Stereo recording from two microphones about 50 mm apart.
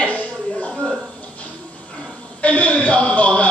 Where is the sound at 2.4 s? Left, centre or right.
Left.